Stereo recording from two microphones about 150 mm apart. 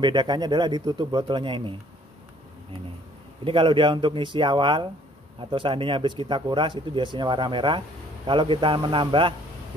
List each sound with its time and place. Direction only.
0.0 s speech: 30° right (ahead or behind)
3.4 s speech: 35° right (ahead or behind)